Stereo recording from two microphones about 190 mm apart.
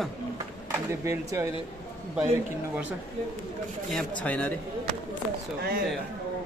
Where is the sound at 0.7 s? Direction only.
15° right (ahead or behind).